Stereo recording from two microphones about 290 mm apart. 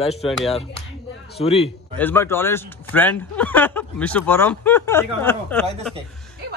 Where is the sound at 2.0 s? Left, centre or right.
Centre.